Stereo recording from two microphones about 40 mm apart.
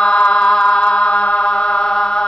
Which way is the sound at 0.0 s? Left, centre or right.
Left.